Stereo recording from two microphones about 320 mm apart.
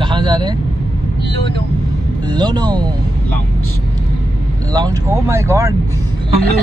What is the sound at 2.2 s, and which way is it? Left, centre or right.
Speech, centre.